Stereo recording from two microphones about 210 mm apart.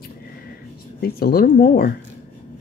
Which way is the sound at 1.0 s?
45° left (ahead or behind).